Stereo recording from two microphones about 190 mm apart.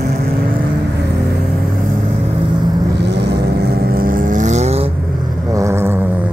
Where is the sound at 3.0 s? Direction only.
60° right (ahead or behind); by 4.9 s 35° right (ahead or behind).